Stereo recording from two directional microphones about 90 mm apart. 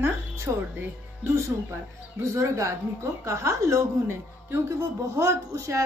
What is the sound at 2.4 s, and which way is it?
A woman's voice, 35° right (ahead or behind).